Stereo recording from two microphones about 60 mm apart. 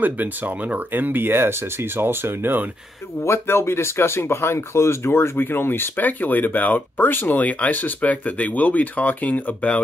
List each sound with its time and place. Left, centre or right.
0.0 s speech: right
3.2 s speech: left